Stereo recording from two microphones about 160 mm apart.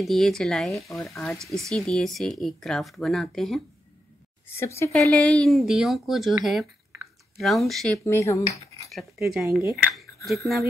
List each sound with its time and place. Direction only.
0.0 s speech: centre (ahead or behind)
0.7 s speech: 20° left (ahead or behind)
1.0 s speech: centre (ahead or behind)
4.5 s speech: 15° left (ahead or behind)
5.1 s speech: 5° left (ahead or behind)
8.0 s speech: 20° left (ahead or behind)
8.9 s speech: 5° right (ahead or behind)
9.7 s a sound: centre (ahead or behind)